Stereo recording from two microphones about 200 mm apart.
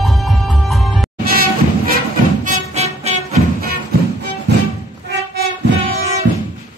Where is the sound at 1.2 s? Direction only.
45° right (ahead or behind).